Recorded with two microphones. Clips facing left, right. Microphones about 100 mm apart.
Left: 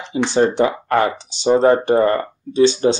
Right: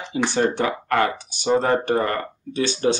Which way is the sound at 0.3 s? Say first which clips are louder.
Left 7 dB; 25° left (ahead or behind).